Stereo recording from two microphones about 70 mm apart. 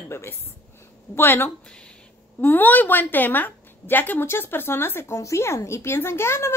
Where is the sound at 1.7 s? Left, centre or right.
Centre.